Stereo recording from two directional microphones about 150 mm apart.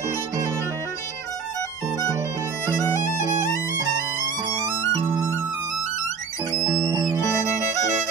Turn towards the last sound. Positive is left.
turn(degrees=-20)  # may be behind; listen again after turning